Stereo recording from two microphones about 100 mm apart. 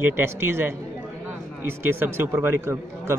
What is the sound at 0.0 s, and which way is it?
A man's voice, 25° right (ahead or behind).